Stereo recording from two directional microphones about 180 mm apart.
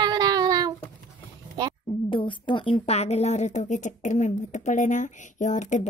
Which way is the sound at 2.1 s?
25° left (ahead or behind).